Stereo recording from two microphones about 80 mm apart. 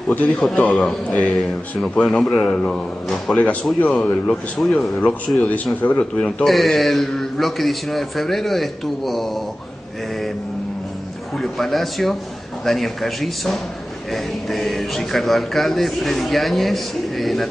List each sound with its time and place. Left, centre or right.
0.2 s speech: centre
0.7 s a man's voice: centre
4.0 s a man's voice: centre
4.6 s speech: centre
5.8 s a man's voice: centre
6.4 s speech: centre
11.3 s speech: centre